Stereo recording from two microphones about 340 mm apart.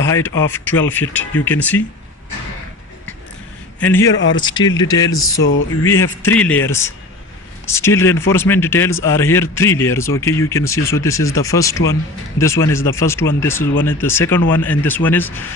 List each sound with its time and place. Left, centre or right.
0.0 s a man's voice: centre
3.8 s a man's voice: centre
5.1 s speech: left
6.2 s a man's voice: centre